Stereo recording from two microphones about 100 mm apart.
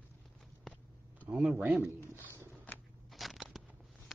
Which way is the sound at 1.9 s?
30° left (ahead or behind).